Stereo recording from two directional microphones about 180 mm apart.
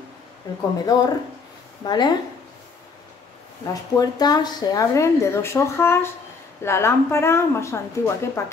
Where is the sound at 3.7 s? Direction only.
20° left (ahead or behind).